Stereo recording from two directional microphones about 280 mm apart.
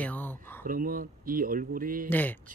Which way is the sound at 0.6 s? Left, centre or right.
Right.